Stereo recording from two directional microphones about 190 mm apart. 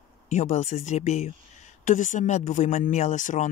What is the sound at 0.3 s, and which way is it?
Speech, 40° left (ahead or behind).